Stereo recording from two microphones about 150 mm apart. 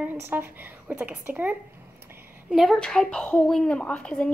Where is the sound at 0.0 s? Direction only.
10° right (ahead or behind).